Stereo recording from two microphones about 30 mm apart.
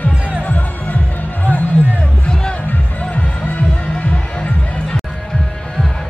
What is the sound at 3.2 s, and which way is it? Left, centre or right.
Music, left.